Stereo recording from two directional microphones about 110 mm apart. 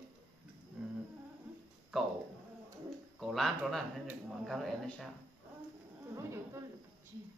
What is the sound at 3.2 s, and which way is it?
Speech, centre (ahead or behind).